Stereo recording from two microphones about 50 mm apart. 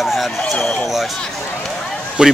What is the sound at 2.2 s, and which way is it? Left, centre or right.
Speech, centre.